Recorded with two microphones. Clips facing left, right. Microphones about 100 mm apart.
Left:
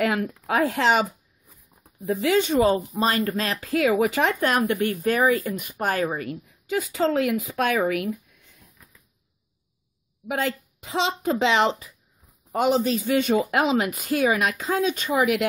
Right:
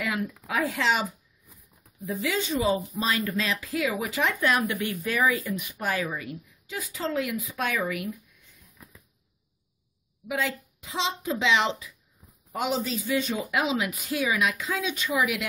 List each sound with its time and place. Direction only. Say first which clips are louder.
0.0 s a man's voice: left 6 dB; 60° left (ahead or behind)
2.0 s a man's voice: left 7 dB; 55° left (ahead or behind)
2.9 s speech: left 5 dB; 45° left (ahead or behind)
10.2 s a man's voice: left 3 dB; 50° left (ahead or behind)